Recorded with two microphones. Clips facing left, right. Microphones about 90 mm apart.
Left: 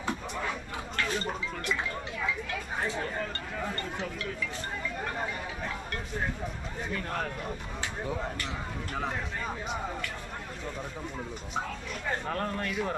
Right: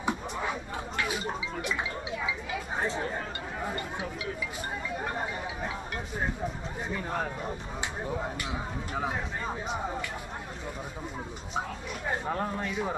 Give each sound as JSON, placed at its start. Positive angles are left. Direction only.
{"t": 0.0, "sound": "music", "side_deg": -15}
{"t": 2.2, "sound": "a sound", "side_deg": -10}
{"t": 2.9, "sound": "speech", "side_deg": -15}
{"t": 4.9, "sound": "a sound", "side_deg": -15}
{"t": 6.9, "sound": "speech", "side_deg": -10}
{"t": 12.1, "sound": "speech", "side_deg": -10}